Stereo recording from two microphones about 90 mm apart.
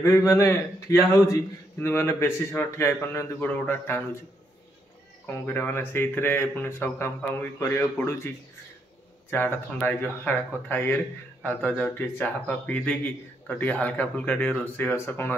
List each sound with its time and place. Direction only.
0.0 s a man's voice: 35° left (ahead or behind)
5.2 s a man's voice: 20° left (ahead or behind)
9.3 s a man's voice: 20° left (ahead or behind)